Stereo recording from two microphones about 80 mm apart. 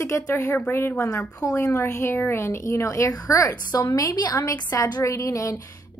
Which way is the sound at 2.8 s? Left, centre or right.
Left.